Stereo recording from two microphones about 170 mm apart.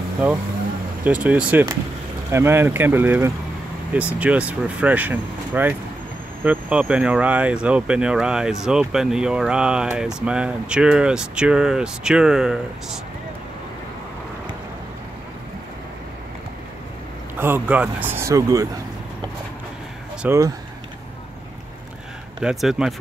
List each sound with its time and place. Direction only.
1.0 s speech: 5° right (ahead or behind)
17.4 s speech: 10° right (ahead or behind)
20.2 s speech: 15° right (ahead or behind)
22.4 s speech: 5° right (ahead or behind)